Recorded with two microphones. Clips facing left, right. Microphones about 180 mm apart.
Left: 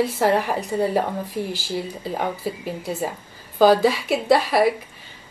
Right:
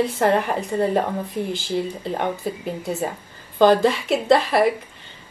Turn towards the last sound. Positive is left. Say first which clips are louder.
# right 1 dB
turn(degrees=5)  # may be behind; listen again after turning